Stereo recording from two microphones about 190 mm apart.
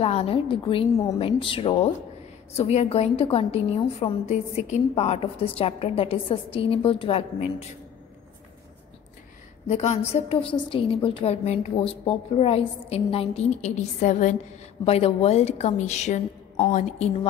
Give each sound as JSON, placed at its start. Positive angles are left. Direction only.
{"t": 0.0, "sound": "a woman's voice", "side_deg": 30}
{"t": 9.7, "sound": "a woman's voice", "side_deg": 35}